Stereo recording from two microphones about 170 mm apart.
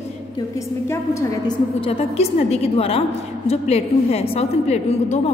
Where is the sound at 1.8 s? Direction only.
35° left (ahead or behind).